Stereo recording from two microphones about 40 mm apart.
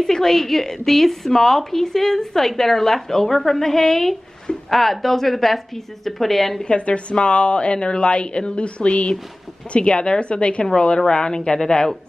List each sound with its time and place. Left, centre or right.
0.0 s a woman's voice: centre
6.6 s a woman's voice: left